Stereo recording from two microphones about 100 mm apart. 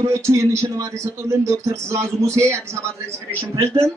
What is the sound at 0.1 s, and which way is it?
A man's voice, 30° right (ahead or behind).